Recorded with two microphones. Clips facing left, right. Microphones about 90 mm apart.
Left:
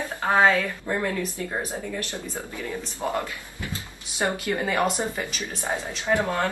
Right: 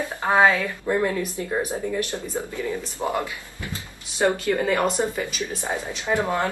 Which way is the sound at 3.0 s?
15° right (ahead or behind).